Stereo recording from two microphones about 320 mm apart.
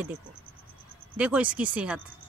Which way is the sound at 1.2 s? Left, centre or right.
Centre.